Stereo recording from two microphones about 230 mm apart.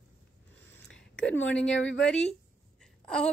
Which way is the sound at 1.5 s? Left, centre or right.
Centre.